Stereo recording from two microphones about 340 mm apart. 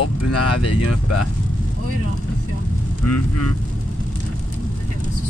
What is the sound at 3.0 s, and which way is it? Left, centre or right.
Speech, left.